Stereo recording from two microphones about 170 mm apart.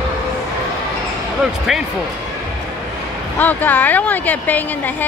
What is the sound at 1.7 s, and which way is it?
Speech, centre (ahead or behind).